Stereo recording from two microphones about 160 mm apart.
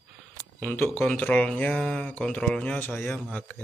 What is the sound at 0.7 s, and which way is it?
Speech, 10° left (ahead or behind).